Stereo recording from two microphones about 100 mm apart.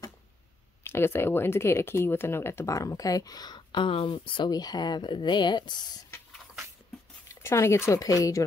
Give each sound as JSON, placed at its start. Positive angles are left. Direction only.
{"t": 0.8, "sound": "speech", "side_deg": 25}
{"t": 4.5, "sound": "speech", "side_deg": 40}
{"t": 7.4, "sound": "speech", "side_deg": 30}